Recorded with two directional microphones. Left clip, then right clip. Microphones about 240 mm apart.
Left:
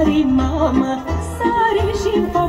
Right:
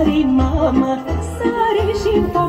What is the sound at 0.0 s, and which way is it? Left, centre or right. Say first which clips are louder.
Music: even; centre.